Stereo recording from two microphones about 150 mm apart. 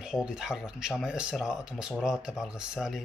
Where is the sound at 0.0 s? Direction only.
5° right (ahead or behind).